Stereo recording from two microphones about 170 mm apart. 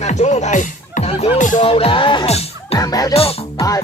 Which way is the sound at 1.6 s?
35° left (ahead or behind).